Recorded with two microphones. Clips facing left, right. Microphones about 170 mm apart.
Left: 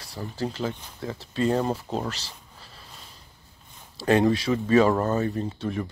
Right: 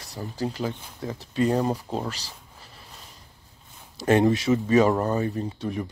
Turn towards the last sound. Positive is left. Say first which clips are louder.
# even
turn(degrees=-15)  # may be behind; listen again after turning